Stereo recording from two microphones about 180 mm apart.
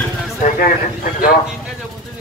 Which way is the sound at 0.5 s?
50° left (ahead or behind).